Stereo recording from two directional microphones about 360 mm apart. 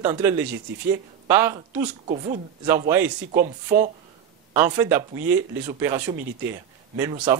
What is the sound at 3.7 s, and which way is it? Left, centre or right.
Speech, right.